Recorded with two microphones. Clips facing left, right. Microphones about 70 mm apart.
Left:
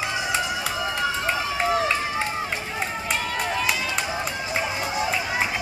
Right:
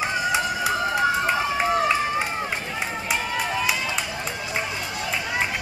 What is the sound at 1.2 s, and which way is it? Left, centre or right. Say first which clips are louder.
Run: right 2 dB; centre.